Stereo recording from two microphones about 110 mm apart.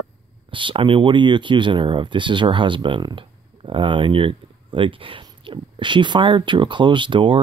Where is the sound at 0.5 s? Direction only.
50° right (ahead or behind).